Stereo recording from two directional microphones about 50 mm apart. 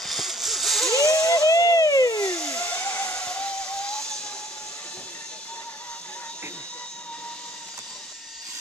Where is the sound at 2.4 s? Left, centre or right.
Left.